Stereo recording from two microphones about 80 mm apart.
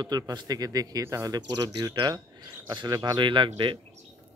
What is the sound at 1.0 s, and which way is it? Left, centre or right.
Speech, right.